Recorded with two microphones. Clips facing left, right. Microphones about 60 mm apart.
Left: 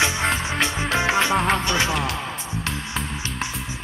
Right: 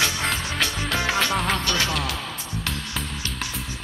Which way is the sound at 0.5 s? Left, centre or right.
Left.